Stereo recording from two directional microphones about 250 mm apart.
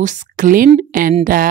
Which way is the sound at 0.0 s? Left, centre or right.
Right.